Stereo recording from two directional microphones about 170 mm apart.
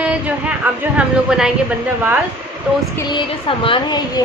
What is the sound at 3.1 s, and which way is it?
A woman's voice, 30° left (ahead or behind).